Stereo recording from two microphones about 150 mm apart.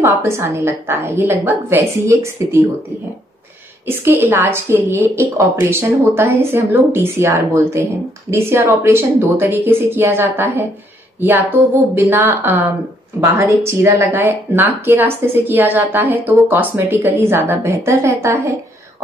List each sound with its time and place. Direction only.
0.0 s speech: 15° right (ahead or behind)
3.8 s speech: 15° right (ahead or behind)